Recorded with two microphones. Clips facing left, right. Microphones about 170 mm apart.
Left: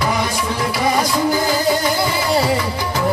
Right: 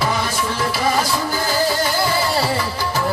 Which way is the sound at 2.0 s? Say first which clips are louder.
Left 2 dB; 20° left (ahead or behind).